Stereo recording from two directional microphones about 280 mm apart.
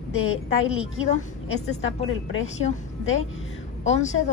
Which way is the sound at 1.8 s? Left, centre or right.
Left.